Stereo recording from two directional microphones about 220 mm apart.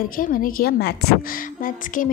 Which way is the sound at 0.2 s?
40° left (ahead or behind).